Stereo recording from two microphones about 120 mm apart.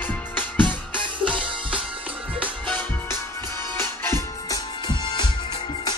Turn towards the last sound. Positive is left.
turn(degrees=40)  # may be behind; listen again after turning